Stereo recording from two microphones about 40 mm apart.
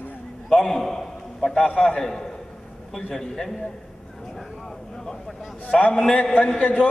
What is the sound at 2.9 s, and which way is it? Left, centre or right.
Speech, centre.